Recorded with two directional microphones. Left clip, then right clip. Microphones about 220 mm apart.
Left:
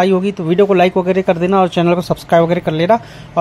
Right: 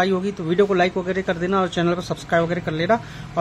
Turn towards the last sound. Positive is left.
turn(degrees=25)  # may be behind; listen again after turning